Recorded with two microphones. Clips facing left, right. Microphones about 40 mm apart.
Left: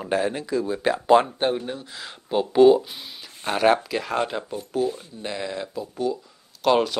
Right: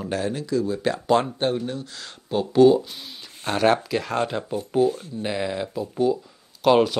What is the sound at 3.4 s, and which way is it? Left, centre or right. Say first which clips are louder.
Speech: even; centre.